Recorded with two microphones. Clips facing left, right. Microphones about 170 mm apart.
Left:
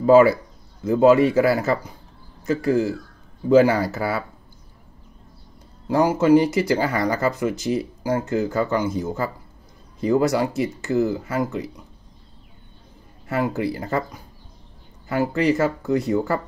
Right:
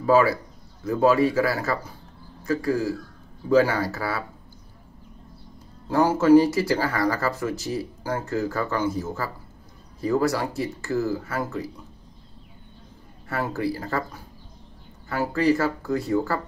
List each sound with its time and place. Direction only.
0.0 s speech: 25° left (ahead or behind)
5.9 s speech: 15° left (ahead or behind)
13.3 s speech: 20° left (ahead or behind)